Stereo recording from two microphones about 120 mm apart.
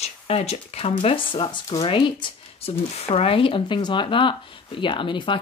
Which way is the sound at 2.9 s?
60° left (ahead or behind).